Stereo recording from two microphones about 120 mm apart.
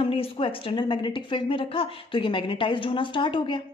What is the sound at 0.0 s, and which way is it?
A woman's voice, 50° left (ahead or behind).